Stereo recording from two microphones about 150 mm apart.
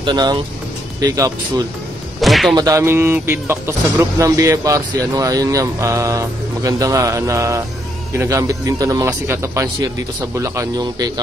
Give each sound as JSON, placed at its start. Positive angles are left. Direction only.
{"t": 0.0, "sound": "speech", "side_deg": -30}
{"t": 2.1, "sound": "a sound", "side_deg": 0}
{"t": 2.5, "sound": "speech", "side_deg": -20}